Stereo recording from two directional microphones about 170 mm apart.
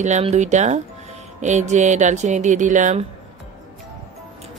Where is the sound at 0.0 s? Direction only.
45° right (ahead or behind).